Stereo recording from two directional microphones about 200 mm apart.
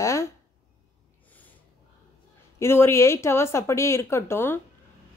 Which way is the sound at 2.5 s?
10° left (ahead or behind).